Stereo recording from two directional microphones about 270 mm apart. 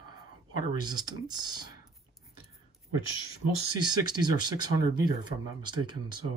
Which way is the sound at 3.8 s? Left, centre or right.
Centre.